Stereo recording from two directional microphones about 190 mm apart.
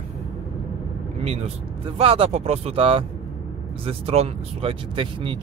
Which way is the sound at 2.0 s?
30° right (ahead or behind).